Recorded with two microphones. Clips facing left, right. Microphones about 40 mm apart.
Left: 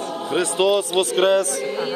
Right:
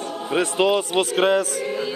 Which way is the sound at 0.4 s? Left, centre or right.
Right.